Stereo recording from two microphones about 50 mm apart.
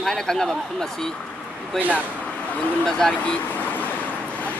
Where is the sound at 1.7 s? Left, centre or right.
Right.